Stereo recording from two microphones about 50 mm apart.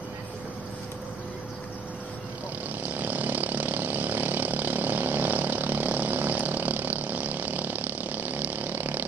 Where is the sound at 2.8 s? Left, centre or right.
Right.